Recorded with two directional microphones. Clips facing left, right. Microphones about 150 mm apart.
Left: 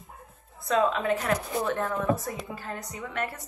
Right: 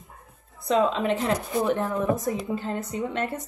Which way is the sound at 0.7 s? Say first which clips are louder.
Right 2 dB; 20° right (ahead or behind).